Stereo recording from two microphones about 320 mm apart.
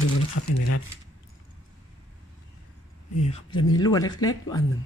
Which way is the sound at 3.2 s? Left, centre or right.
Centre.